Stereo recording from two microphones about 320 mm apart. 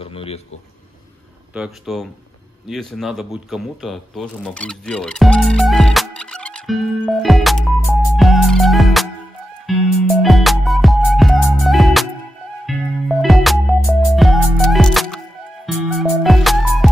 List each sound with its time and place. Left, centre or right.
0.0 s a sound: centre
1.5 s speech: centre
9.7 s music: centre